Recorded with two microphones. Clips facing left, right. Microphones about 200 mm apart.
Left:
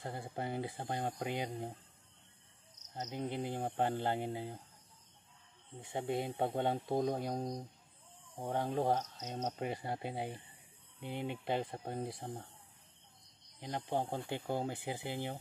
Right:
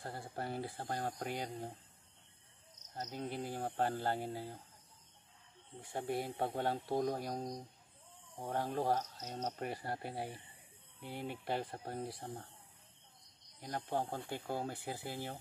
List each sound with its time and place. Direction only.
0.0 s speech: 20° left (ahead or behind)
3.0 s speech: 15° left (ahead or behind)
5.8 s speech: 20° left (ahead or behind)
13.6 s speech: 15° left (ahead or behind)